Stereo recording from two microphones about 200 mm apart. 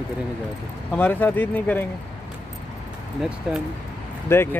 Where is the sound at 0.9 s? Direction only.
10° left (ahead or behind).